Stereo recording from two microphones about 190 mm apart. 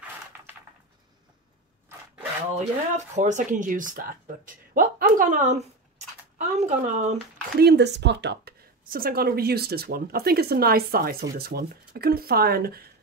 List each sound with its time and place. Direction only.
2.1 s speech: 35° right (ahead or behind)
7.5 s speech: 60° right (ahead or behind)